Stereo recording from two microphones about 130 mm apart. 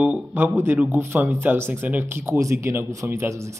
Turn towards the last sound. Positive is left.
turn(degrees=-20)  # may be behind; listen again after turning